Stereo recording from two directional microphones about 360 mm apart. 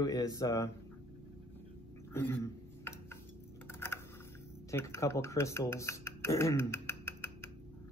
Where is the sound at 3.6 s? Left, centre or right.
Centre.